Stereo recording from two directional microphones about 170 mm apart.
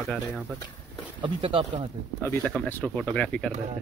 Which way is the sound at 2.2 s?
15° left (ahead or behind).